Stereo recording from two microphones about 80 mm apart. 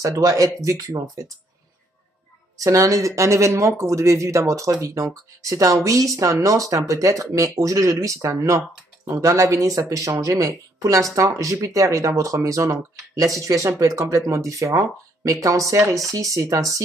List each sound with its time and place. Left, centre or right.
0.0 s speech: right
2.6 s speech: right